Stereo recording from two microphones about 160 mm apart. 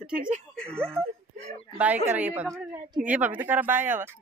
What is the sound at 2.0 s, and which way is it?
A woman's voice, 10° right (ahead or behind).